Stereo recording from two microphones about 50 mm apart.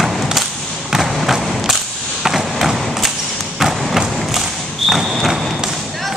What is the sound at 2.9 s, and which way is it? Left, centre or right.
Thump, centre.